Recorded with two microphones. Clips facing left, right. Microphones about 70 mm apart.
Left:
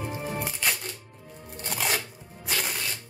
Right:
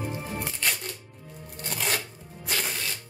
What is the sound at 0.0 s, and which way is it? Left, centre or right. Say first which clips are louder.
Music: left 1 dB; centre.